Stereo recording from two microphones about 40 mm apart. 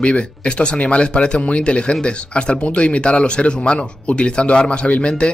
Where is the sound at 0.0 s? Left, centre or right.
Left.